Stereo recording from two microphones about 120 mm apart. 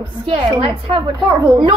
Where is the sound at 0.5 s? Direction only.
45° right (ahead or behind).